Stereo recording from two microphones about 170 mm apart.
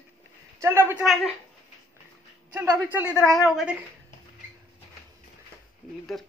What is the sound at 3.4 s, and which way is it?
Speech, 5° right (ahead or behind).